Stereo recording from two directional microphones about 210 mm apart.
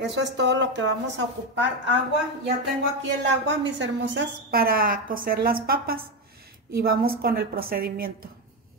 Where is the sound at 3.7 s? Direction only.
60° right (ahead or behind); by 8.3 s 45° right (ahead or behind).